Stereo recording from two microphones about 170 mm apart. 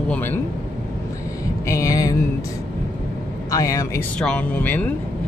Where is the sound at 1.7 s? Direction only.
20° left (ahead or behind).